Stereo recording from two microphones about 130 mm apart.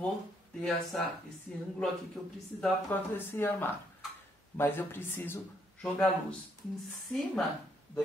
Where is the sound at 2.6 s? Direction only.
15° left (ahead or behind).